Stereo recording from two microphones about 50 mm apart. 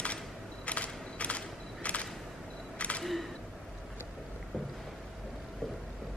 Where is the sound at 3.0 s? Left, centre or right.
Centre.